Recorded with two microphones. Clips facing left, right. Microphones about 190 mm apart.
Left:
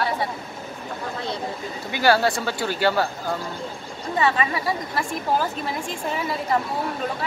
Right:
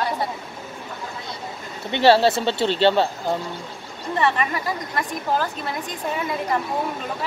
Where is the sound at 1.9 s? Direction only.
25° right (ahead or behind).